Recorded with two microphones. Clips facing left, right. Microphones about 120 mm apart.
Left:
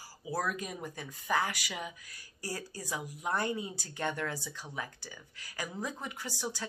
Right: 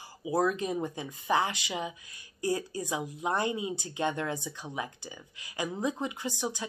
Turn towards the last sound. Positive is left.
turn(degrees=-20)  # may be behind; listen again after turning